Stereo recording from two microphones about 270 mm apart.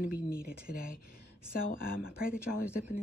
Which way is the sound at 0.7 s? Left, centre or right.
Left.